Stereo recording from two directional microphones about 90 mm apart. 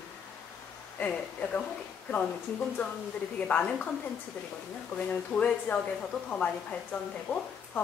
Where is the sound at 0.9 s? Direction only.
15° left (ahead or behind).